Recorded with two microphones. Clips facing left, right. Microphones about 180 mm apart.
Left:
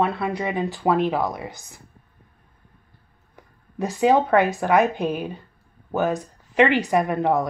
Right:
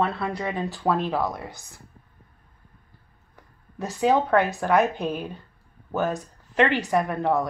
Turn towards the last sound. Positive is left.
turn(degrees=15)  # may be behind; listen again after turning